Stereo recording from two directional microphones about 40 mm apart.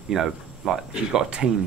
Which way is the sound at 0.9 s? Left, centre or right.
Centre.